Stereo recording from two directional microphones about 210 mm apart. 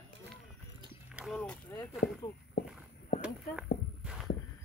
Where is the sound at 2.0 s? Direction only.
50° left (ahead or behind).